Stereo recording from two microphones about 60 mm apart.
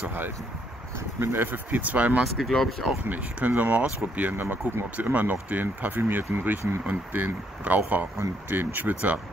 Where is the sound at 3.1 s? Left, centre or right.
Right.